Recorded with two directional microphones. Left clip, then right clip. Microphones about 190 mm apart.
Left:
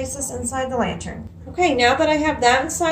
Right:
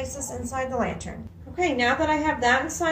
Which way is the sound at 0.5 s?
5° left (ahead or behind).